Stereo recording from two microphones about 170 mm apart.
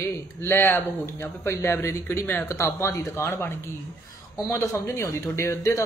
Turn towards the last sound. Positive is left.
turn(degrees=15)  # may be behind; listen again after turning